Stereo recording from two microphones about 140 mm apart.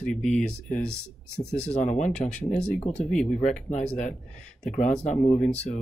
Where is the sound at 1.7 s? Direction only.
55° left (ahead or behind).